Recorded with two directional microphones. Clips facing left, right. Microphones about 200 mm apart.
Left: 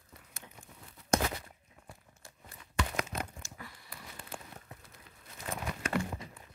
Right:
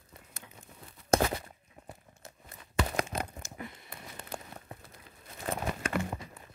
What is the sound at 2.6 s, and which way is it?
Tearing, 35° right (ahead or behind).